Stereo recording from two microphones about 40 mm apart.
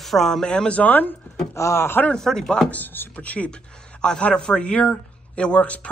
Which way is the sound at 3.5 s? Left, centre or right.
Left.